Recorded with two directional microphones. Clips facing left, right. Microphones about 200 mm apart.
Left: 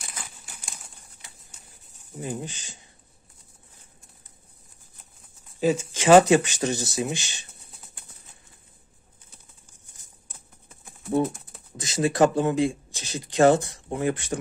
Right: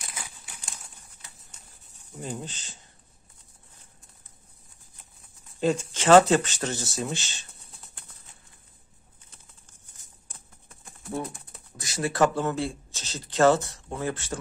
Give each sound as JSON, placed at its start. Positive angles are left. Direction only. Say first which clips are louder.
{"t": 2.1, "sound": "speech", "louder": "left 3 dB", "side_deg": 5}
{"t": 5.6, "sound": "speech", "louder": "left 2 dB", "side_deg": 5}
{"t": 11.2, "sound": "typing", "louder": "left 8 dB", "side_deg": 0}
{"t": 11.7, "sound": "speech", "louder": "left 5 dB", "side_deg": 20}